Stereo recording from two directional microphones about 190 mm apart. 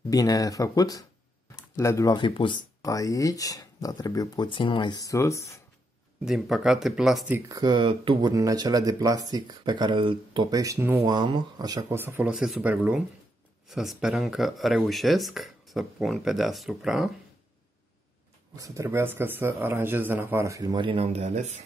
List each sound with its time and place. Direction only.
0.1 s speech: 20° left (ahead or behind)
6.2 s speech: centre (ahead or behind)
7.3 s speech: 15° right (ahead or behind); by 17.1 s centre (ahead or behind)
18.6 s speech: 15° right (ahead or behind); by 21.5 s 35° right (ahead or behind)